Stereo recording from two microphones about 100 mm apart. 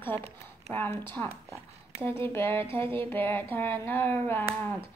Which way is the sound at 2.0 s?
25° left (ahead or behind).